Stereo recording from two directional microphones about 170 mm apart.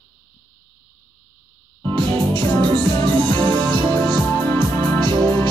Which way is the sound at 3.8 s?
10° left (ahead or behind).